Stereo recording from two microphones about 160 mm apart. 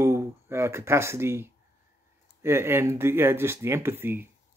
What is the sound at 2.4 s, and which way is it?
Speech, 15° right (ahead or behind).